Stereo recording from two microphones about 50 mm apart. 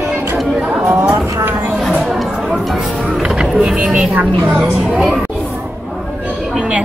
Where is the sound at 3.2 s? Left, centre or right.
Centre.